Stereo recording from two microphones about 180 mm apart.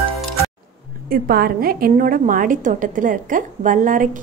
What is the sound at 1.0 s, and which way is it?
A woman's voice, 55° right (ahead or behind).